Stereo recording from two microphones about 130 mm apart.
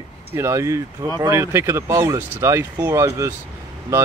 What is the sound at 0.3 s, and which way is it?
Speech, 20° right (ahead or behind).